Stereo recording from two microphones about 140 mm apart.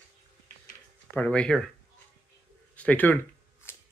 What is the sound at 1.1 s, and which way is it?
Speech, 10° left (ahead or behind).